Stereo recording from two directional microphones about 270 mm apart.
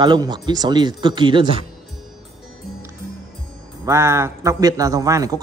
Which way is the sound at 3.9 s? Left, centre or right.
Centre.